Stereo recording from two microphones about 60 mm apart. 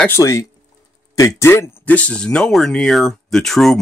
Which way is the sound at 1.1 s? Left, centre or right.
Left.